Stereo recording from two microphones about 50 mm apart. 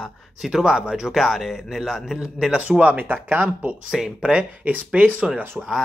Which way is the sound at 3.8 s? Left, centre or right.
Centre.